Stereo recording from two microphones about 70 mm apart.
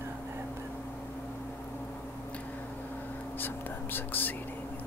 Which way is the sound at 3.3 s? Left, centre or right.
Left.